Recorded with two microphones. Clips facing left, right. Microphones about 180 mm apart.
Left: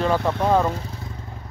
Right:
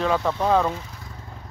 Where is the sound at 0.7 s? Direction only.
30° left (ahead or behind).